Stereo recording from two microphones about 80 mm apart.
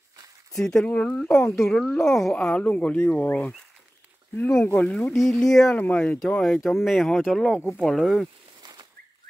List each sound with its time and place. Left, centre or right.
0.6 s speech: centre
1.6 s speech: centre
2.5 s speech: centre
4.8 s speech: centre
5.7 s speech: centre